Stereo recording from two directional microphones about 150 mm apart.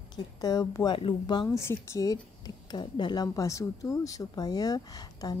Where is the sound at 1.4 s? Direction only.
15° left (ahead or behind).